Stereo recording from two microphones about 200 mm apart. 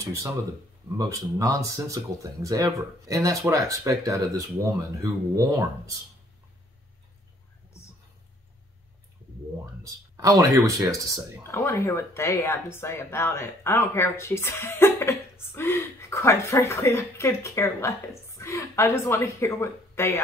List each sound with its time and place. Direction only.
0.8 s speech: 15° right (ahead or behind)
9.8 s speech: 15° right (ahead or behind)
11.4 s speech: 15° left (ahead or behind)